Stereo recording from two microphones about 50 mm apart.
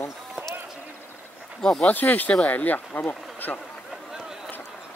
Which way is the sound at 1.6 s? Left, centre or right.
Centre.